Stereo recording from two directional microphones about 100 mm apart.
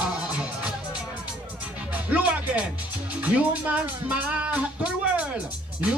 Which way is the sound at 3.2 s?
15° right (ahead or behind).